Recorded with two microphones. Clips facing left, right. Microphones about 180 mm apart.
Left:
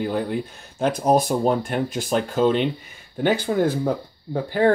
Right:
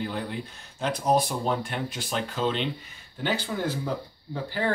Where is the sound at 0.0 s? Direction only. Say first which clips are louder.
Left 8 dB; 50° left (ahead or behind).